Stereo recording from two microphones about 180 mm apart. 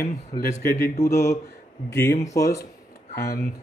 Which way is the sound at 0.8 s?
15° left (ahead or behind).